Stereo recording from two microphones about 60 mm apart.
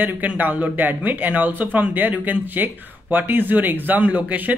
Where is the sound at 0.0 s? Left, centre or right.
Right.